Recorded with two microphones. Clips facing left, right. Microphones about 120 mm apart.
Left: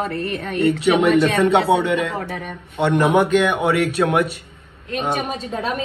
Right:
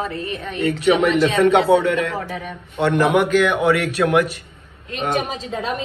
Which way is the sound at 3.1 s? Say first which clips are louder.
Even; 25° left (ahead or behind).